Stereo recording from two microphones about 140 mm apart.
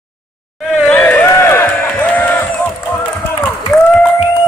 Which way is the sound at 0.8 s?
10° left (ahead or behind).